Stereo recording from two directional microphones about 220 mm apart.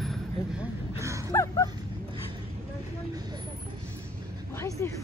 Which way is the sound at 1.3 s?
15° left (ahead or behind).